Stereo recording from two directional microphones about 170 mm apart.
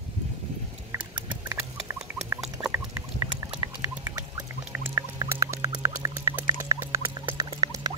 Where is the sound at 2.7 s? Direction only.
15° right (ahead or behind).